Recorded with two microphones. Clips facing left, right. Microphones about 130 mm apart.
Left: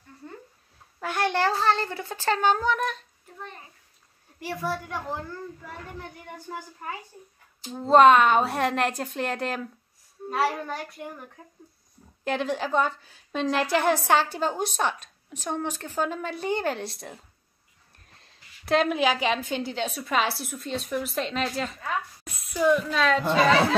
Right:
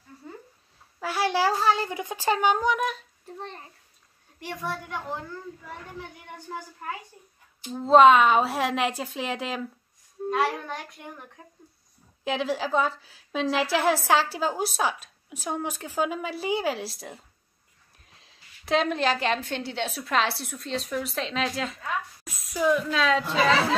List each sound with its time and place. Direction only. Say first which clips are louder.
0.9 s a child's voice: even; 5° right (ahead or behind)
3.3 s a child's voice: right 2 dB; 30° right (ahead or behind)
4.4 s a woman's voice: left 3 dB; 5° left (ahead or behind)
7.7 s a woman's voice: even; centre (ahead or behind)
12.3 s a woman's voice: even; centre (ahead or behind)